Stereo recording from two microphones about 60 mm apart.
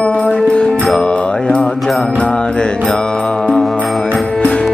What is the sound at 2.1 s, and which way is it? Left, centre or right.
Mantra, centre.